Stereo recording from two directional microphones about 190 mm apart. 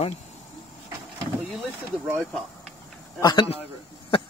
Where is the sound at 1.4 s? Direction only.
5° right (ahead or behind).